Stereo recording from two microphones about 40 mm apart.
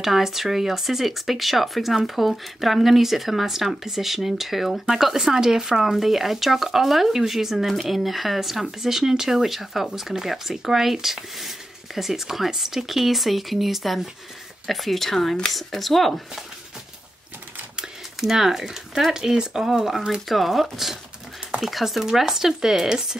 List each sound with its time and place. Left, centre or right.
0.0 s speech: centre
18.2 s speech: centre
20.2 s speech: centre